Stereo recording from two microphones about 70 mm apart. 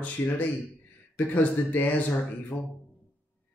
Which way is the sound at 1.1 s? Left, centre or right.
Left.